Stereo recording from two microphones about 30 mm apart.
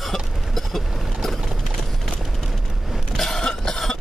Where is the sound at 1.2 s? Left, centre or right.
Centre.